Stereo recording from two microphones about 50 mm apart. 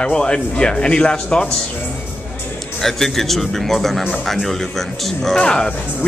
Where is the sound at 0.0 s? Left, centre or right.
Centre.